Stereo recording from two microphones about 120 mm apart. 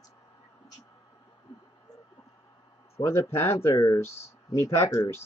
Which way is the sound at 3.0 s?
45° left (ahead or behind).